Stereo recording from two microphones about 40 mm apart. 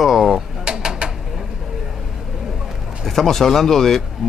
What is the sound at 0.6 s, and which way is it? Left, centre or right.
Bird, right.